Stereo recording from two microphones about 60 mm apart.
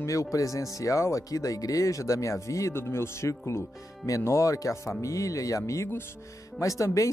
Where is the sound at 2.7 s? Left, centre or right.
Left.